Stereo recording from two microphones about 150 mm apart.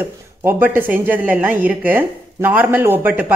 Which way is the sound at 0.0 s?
15° right (ahead or behind).